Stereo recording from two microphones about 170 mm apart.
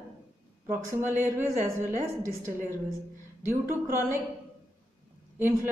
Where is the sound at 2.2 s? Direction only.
15° left (ahead or behind).